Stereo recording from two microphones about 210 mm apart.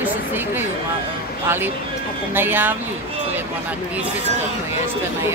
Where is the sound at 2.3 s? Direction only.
10° right (ahead or behind).